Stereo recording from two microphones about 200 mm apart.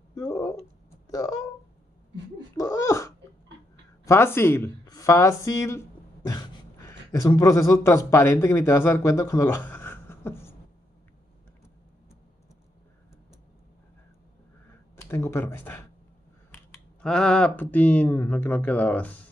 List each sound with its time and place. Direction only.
0.1 s a sound: 15° left (ahead or behind)
2.5 s babbling: 15° left (ahead or behind)
4.0 s speech: 15° left (ahead or behind)
15.0 s speech: 15° left (ahead or behind)